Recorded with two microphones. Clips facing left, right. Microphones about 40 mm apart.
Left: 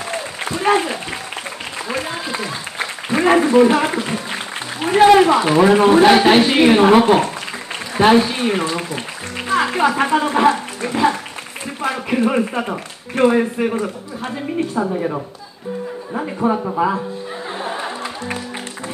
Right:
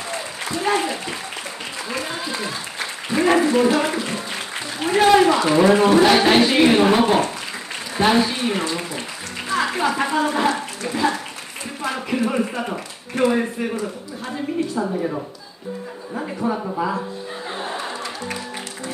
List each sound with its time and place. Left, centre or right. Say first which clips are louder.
3.1 s a man's voice: left 3 dB; left
9.5 s music: left 4 dB; left
9.9 s a man's voice: left 4 dB; left
14.8 s speech: left 6 dB; left
16.4 s a man's voice: left 6 dB; left